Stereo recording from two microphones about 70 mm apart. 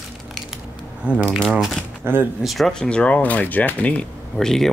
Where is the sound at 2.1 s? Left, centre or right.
Right.